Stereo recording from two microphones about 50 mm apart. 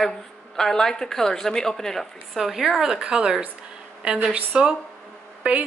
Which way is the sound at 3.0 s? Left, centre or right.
Right.